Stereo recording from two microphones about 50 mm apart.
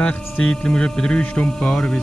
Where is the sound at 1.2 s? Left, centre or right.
Left.